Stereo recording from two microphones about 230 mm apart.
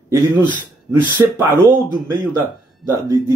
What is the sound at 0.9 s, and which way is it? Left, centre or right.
Speech, centre.